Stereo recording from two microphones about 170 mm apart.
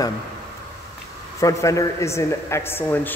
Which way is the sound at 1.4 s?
20° left (ahead or behind).